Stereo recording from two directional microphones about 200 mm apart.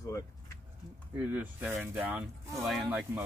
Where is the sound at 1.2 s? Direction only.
10° right (ahead or behind).